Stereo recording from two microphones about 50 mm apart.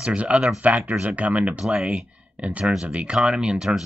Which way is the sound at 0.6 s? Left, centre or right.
Right.